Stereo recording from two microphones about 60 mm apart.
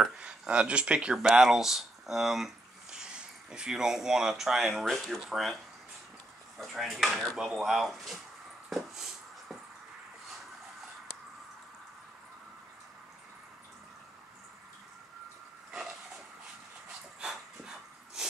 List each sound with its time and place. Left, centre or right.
0.2 s speech: centre
1.1 s speech: centre
6.6 s speech: centre
8.6 s a sound: centre
17.2 s dog: centre